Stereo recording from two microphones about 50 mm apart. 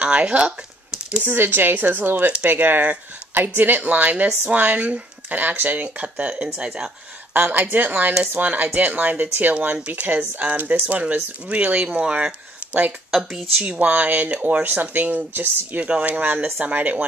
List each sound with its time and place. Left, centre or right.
0.0 s a sound: right
1.3 s a woman's voice: right
7.3 s speech: right
13.1 s speech: centre
13.7 s speech: right
15.9 s speech: right